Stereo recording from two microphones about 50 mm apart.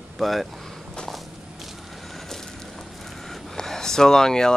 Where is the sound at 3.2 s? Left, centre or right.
Centre.